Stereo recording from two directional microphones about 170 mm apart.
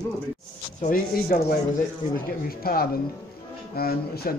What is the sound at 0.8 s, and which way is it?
Speech, 50° left (ahead or behind).